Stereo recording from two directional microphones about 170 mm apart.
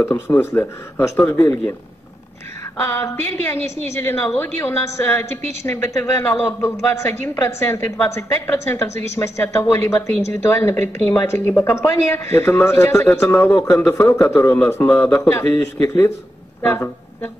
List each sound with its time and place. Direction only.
0.0 s a woman's voice: 15° left (ahead or behind)
2.8 s a woman's voice: 15° left (ahead or behind)